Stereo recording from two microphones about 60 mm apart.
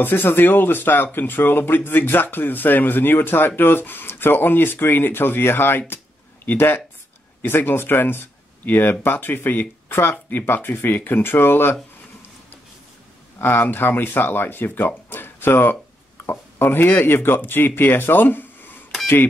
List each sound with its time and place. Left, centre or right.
0.0 s speech: left
13.4 s speech: left
15.0 s music: left
16.3 s speech: left